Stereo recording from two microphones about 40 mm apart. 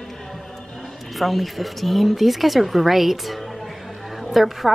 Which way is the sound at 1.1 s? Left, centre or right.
Centre.